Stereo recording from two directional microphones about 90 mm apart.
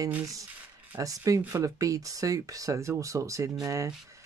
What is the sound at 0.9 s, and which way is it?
Speech, 40° right (ahead or behind).